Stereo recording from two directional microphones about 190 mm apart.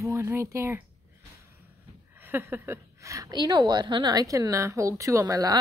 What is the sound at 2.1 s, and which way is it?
A woman's voice, 10° right (ahead or behind).